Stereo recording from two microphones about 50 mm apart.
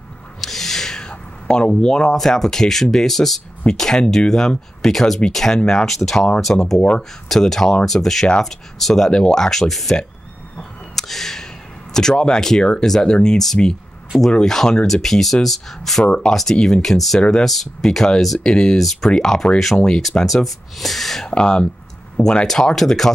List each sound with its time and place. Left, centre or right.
0.4 s speech: centre
6.8 s speech: centre
7.2 s speech: centre
11.0 s a sound: centre
11.9 s speech: centre
17.2 s speech: centre
17.5 s speech: centre
20.0 s speech: centre
21.3 s speech: centre
22.5 s speech: centre